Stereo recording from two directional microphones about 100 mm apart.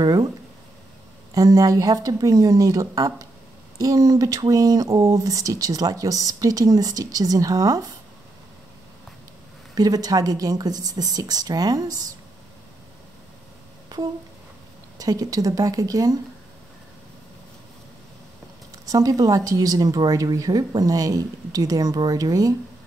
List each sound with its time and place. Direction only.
0.0 s speech: 40° right (ahead or behind)
1.3 s speech: 35° right (ahead or behind)
9.8 s speech: 40° right (ahead or behind)
15.0 s speech: 35° right (ahead or behind)
18.9 s speech: 40° right (ahead or behind)